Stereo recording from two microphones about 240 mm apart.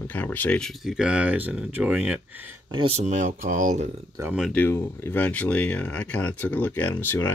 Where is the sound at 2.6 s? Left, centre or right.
Right.